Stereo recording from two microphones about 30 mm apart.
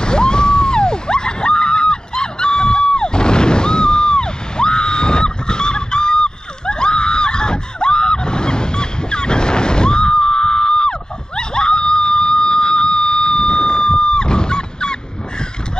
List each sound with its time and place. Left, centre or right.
0.0 s screaming: left